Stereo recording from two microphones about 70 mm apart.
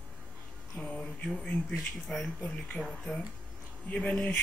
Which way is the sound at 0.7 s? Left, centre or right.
Centre.